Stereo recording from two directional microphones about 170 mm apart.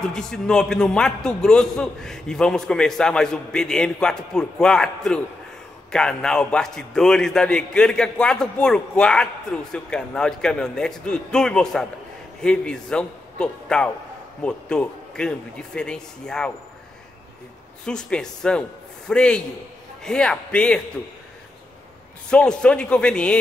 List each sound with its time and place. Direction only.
0.0 s a man's voice: 5° left (ahead or behind)
17.8 s a man's voice: 5° left (ahead or behind)
22.3 s a man's voice: 5° left (ahead or behind)